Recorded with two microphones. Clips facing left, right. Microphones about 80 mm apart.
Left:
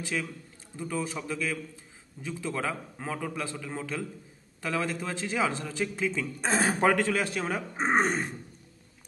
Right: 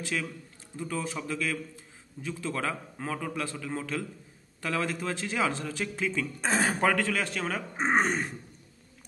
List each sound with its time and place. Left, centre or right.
0.7 s a man's voice: centre